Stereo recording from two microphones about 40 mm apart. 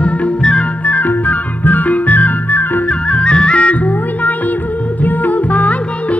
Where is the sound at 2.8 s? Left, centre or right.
Left.